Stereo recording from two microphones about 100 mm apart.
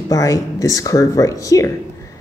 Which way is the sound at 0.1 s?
35° left (ahead or behind).